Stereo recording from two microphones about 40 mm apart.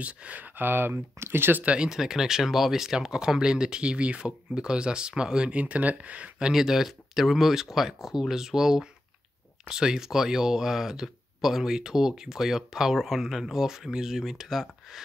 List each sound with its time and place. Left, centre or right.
0.0 s speech: right
0.6 s speech: right
1.8 s speech: centre
5.6 s speech: right
6.5 s speech: centre